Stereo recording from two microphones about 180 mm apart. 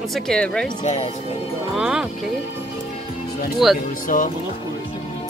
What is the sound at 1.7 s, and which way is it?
Speech, 5° right (ahead or behind).